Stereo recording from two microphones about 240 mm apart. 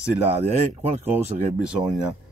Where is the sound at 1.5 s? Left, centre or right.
Centre.